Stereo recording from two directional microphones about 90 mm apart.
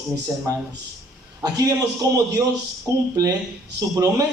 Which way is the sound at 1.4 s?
45° right (ahead or behind).